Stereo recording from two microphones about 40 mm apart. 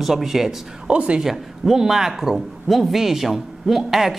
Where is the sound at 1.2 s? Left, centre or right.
Centre.